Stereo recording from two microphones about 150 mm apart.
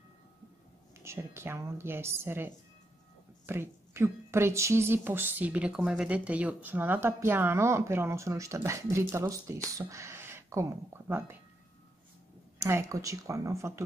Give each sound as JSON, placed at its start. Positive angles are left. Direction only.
{"t": 1.0, "sound": "a woman's voice", "side_deg": -15}
{"t": 12.5, "sound": "speech", "side_deg": -15}